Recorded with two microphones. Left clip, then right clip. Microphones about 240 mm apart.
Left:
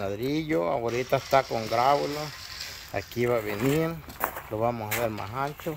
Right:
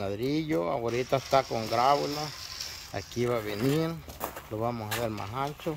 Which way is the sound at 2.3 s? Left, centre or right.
Right.